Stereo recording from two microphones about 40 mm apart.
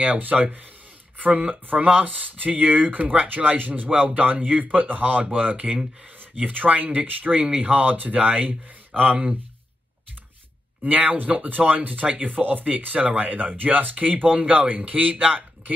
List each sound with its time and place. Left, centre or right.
0.0 s speech: right
8.9 s speech: centre
10.8 s speech: right